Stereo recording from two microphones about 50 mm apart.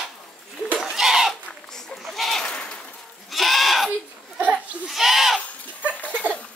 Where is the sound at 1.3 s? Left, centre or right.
Centre.